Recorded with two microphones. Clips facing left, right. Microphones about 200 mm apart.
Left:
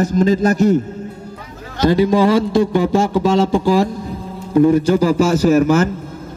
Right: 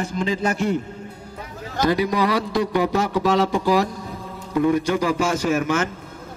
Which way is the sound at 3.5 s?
30° left (ahead or behind).